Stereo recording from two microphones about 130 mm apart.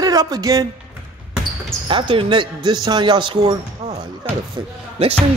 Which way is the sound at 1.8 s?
40° right (ahead or behind).